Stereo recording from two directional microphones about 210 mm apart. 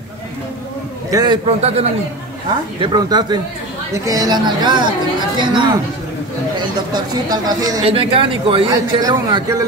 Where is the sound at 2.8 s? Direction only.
20° right (ahead or behind).